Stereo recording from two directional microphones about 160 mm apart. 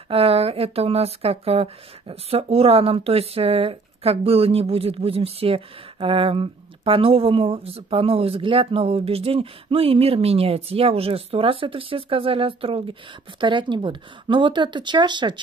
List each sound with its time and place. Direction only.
0.1 s speech: 40° right (ahead or behind)